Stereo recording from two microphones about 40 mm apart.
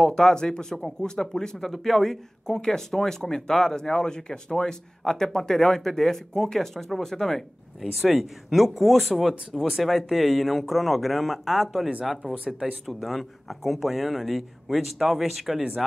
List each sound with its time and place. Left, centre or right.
0.0 s speech: centre
7.8 s speech: centre
12.8 s speech: centre